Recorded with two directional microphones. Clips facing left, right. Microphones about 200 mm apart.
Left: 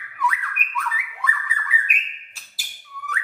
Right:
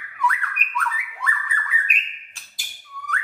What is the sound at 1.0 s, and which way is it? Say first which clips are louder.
Bird: left 1 dB; 60° left (ahead or behind).